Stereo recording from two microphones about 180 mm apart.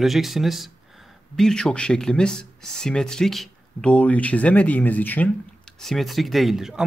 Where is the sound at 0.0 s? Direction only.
Centre (ahead or behind).